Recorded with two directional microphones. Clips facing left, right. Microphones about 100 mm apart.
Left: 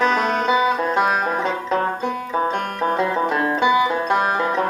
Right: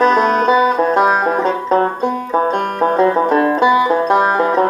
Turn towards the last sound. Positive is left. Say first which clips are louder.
# right 6 dB
turn(degrees=-35)  # may be behind; listen again after turning